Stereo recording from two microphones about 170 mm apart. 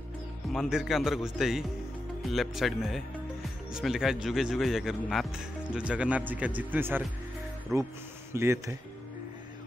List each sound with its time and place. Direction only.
0.5 s speech: centre (ahead or behind)